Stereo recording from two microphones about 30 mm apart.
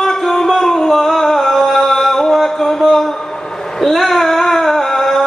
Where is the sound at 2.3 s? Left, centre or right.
Centre.